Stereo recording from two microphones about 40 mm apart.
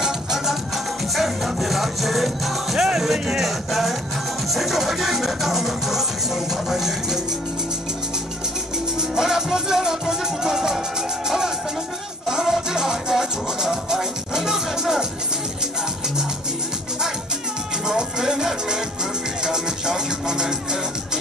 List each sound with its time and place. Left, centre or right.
0.0 s music: centre
9.1 s music: centre
17.8 s music: centre